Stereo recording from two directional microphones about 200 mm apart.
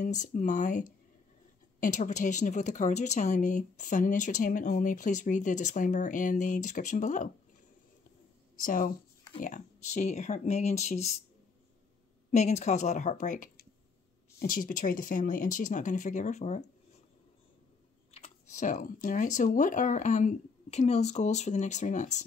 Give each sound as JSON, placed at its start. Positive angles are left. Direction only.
{"t": 0.0, "sound": "a woman's voice", "side_deg": 40}
{"t": 8.5, "sound": "a woman's voice", "side_deg": 45}
{"t": 12.3, "sound": "a woman's voice", "side_deg": 35}
{"t": 18.1, "sound": "a woman's voice", "side_deg": 35}